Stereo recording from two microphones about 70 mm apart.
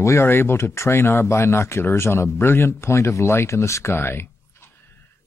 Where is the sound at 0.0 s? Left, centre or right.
Left.